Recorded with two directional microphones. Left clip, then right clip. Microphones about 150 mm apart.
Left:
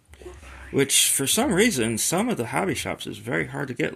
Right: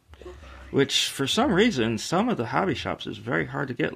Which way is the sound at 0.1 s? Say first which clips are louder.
Left 1 dB; 5° left (ahead or behind).